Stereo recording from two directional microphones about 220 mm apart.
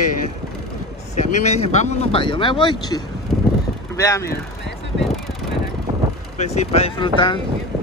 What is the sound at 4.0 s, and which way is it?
Speech, 15° left (ahead or behind).